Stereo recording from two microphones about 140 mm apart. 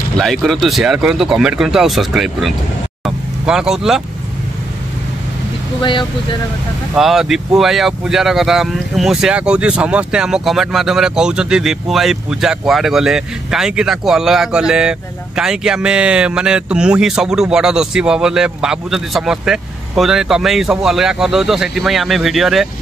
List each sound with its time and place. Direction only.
0.2 s speech: centre (ahead or behind)
5.8 s speech: 35° left (ahead or behind)
7.0 s speech: centre (ahead or behind)